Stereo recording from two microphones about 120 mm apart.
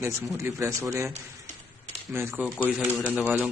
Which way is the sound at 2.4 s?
10° left (ahead or behind).